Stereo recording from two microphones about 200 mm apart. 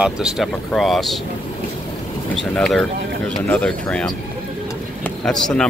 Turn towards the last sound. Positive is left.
turn(degrees=5)  # may be behind; listen again after turning